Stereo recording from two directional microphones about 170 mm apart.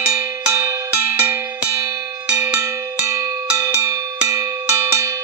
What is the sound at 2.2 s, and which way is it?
Cowbell, 5° right (ahead or behind).